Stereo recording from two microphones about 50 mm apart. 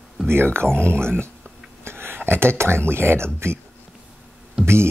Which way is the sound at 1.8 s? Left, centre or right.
Right.